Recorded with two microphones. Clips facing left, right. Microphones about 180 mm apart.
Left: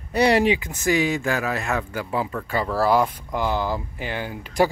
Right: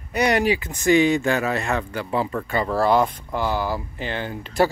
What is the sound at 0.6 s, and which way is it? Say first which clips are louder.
Speech: right 4 dB; 5° left (ahead or behind).